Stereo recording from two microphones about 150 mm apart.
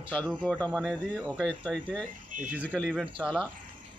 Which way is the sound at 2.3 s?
60° right (ahead or behind).